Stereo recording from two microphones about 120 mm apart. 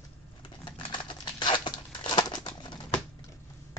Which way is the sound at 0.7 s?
40° left (ahead or behind).